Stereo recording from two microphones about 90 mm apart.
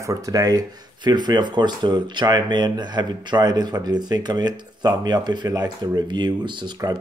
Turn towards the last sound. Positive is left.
turn(degrees=-55)  # may be behind; listen again after turning